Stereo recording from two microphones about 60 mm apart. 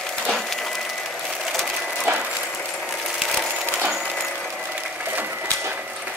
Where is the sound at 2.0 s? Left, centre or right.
Right.